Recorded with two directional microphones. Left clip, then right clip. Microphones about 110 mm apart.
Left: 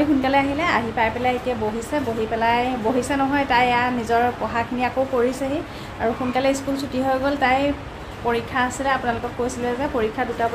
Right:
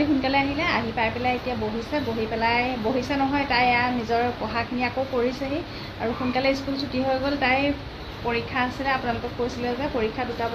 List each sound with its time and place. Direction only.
0.2 s speech: 30° left (ahead or behind)
2.4 s speech: 35° left (ahead or behind)
6.3 s a woman's voice: 25° left (ahead or behind)